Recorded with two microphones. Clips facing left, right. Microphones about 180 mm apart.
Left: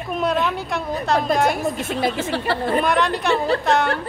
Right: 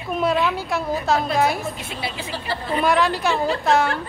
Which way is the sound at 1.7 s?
45° left (ahead or behind).